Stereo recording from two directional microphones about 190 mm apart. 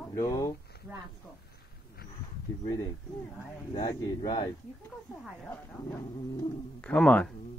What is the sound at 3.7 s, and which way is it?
Speech, 20° left (ahead or behind).